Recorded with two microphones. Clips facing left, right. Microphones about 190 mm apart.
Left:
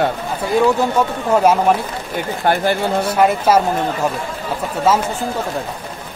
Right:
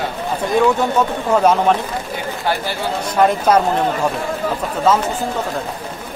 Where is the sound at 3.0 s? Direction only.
5° left (ahead or behind).